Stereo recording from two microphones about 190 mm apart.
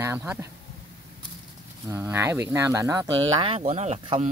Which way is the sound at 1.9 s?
15° right (ahead or behind).